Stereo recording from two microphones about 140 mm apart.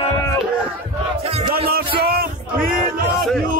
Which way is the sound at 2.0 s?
90° right.